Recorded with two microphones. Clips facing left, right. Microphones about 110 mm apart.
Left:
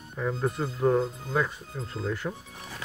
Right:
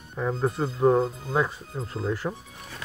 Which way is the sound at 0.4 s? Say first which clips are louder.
Right 4 dB; 30° right (ahead or behind).